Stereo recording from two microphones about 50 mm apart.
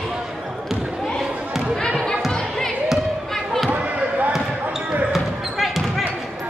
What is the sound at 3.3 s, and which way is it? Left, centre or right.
Basketball bounce, centre.